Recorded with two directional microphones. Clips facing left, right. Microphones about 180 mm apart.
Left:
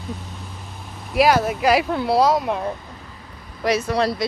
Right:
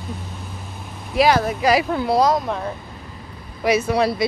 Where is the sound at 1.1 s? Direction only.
Centre (ahead or behind).